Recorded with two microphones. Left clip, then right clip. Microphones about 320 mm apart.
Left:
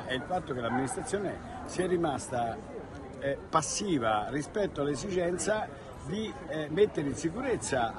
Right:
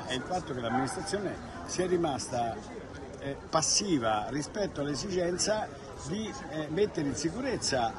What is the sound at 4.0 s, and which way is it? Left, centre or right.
Speech, centre.